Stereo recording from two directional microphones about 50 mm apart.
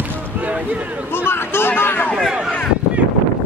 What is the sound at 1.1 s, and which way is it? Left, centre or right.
Speech, left.